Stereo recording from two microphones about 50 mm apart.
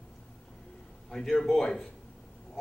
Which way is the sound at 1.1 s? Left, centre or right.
Centre.